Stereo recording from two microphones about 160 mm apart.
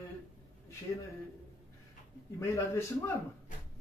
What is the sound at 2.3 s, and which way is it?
Speech, 20° left (ahead or behind).